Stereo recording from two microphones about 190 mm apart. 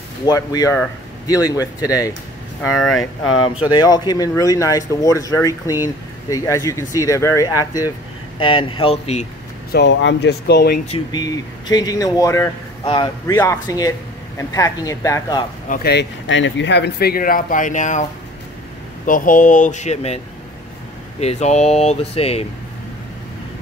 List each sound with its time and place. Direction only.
0.2 s speech: 20° left (ahead or behind)
2.8 s speech: centre (ahead or behind)
3.7 s speech: 20° left (ahead or behind)
9.7 s speech: 65° left (ahead or behind)
11.1 s speech: 20° left (ahead or behind)
15.7 s speech: 60° left (ahead or behind); by 18.0 s 40° left (ahead or behind)
19.0 s speech: 45° left (ahead or behind)
21.2 s speech: 35° left (ahead or behind)